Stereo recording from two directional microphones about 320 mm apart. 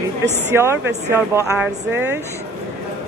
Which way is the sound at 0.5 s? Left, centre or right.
Centre.